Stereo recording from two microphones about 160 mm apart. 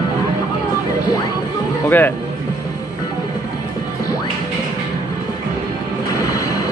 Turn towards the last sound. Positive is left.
turn(degrees=20)  # may be behind; listen again after turning